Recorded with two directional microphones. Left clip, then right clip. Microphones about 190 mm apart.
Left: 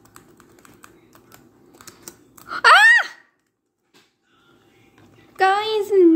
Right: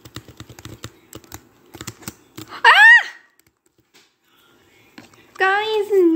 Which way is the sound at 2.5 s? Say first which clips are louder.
Right 2 dB; 45° left (ahead or behind).